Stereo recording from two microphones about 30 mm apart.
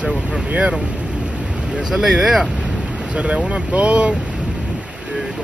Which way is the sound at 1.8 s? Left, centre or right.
Right.